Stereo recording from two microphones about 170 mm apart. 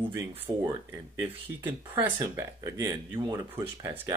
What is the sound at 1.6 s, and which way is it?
Speech, 10° right (ahead or behind).